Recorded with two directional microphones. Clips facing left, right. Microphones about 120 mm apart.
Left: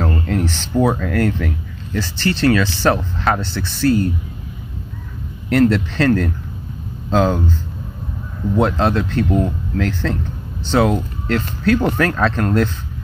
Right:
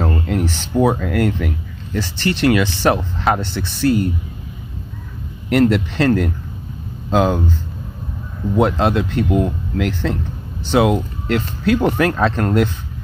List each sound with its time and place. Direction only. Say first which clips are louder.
0.0 s speech: even; 15° right (ahead or behind)
5.5 s speech: even; 15° right (ahead or behind)
7.1 s speech: even; 10° right (ahead or behind)
8.5 s speech: right 1 dB; 10° right (ahead or behind)
12.1 s speech: right 1 dB; 25° right (ahead or behind)